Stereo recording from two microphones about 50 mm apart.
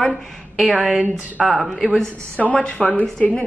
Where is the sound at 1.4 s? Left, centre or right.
Centre.